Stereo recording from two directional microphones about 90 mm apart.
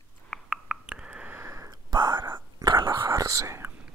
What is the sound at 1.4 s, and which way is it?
Sniff, 35° right (ahead or behind).